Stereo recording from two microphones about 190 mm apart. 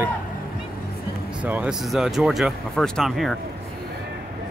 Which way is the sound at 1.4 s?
5° right (ahead or behind).